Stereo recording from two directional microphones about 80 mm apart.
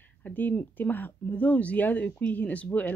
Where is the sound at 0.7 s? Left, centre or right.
Left.